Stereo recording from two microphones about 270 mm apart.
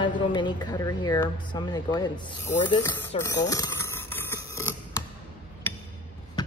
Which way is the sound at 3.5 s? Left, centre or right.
Centre.